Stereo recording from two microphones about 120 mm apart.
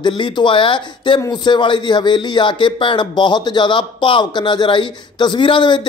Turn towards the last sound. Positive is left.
turn(degrees=40)  # may be behind; listen again after turning